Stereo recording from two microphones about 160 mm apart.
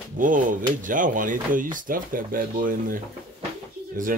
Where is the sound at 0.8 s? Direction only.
55° right (ahead or behind).